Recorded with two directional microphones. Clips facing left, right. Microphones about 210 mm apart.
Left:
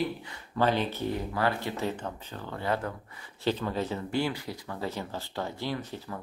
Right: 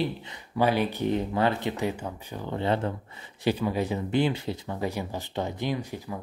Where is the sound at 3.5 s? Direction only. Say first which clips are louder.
Right 3 dB; 10° right (ahead or behind).